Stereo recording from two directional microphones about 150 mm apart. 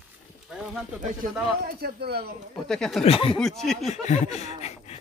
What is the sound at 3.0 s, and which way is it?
Speech, 40° left (ahead or behind).